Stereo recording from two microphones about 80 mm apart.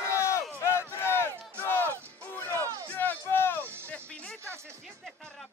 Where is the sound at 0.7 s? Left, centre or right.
Left.